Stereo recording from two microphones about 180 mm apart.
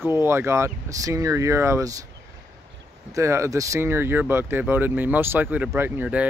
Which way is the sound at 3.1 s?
15° right (ahead or behind).